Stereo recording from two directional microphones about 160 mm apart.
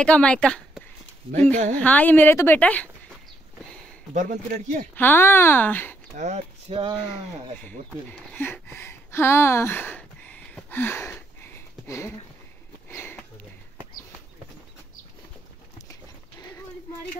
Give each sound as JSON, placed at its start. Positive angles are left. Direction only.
{"t": 0.0, "sound": "a woman's voice", "side_deg": 5}
{"t": 1.8, "sound": "a woman's voice", "side_deg": 10}
{"t": 4.1, "sound": "a man's voice", "side_deg": -50}
{"t": 4.9, "sound": "a woman's voice", "side_deg": 10}
{"t": 6.1, "sound": "a man's voice", "side_deg": -45}
{"t": 6.7, "sound": "speech", "side_deg": -35}
{"t": 8.1, "sound": "speech", "side_deg": 10}
{"t": 12.9, "sound": "sniff", "side_deg": 10}
{"t": 15.9, "sound": "a sound", "side_deg": 25}